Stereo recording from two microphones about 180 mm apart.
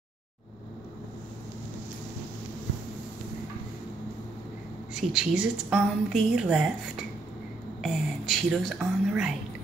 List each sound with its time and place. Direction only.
5.1 s a woman's voice: 5° right (ahead or behind)
7.8 s a woman's voice: centre (ahead or behind)